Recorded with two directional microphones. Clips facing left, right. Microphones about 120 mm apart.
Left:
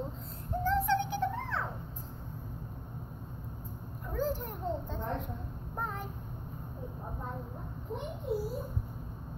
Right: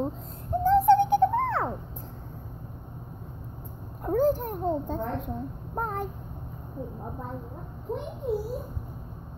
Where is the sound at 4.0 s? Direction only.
50° right (ahead or behind).